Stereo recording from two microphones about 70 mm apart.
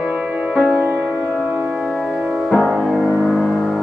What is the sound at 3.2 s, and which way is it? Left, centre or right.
Music, centre.